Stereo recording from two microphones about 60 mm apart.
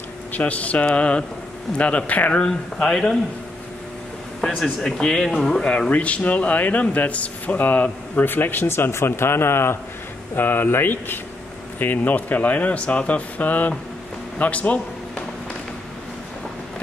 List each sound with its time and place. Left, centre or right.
0.3 s speech: left
2.4 s speech: centre
4.6 s speech: centre; by 13.7 s left
14.4 s a sound: left